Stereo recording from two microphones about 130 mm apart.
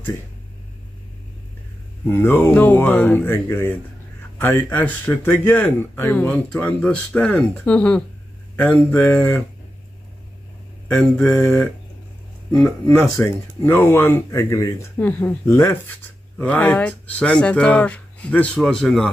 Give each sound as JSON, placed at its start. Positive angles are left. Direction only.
{"t": 2.0, "sound": "speech", "side_deg": 15}
{"t": 10.9, "sound": "speech", "side_deg": 5}
{"t": 11.3, "sound": "speech", "side_deg": 15}
{"t": 13.2, "sound": "speech", "side_deg": 20}